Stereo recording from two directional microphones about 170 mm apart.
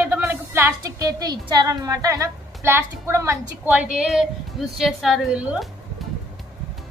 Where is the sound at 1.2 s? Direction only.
25° right (ahead or behind).